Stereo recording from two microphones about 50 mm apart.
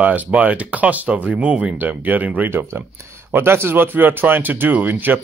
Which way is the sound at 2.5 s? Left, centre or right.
Right.